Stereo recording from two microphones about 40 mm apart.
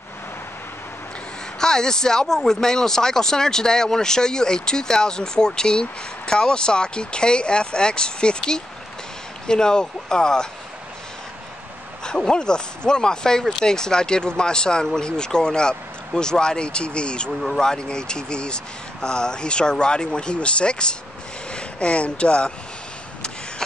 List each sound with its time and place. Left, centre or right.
1.6 s speech: centre
12.0 s speech: centre